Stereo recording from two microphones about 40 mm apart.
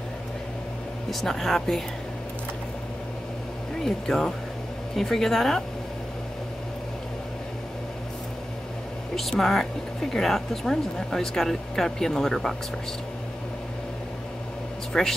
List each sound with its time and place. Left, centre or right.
1.2 s speech: centre
3.8 s speech: centre
9.4 s speech: centre
14.9 s speech: centre